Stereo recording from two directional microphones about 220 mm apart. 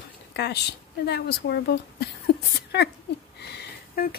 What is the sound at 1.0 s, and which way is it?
Speech, 50° left (ahead or behind).